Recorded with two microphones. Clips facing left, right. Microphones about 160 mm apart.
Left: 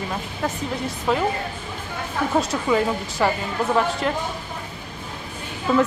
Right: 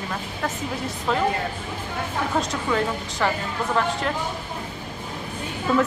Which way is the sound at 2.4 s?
5° left (ahead or behind).